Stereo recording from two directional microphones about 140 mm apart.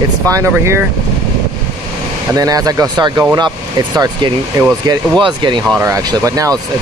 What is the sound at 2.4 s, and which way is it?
Speech, 25° right (ahead or behind).